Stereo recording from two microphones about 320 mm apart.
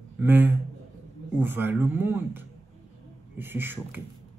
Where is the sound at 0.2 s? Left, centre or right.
Centre.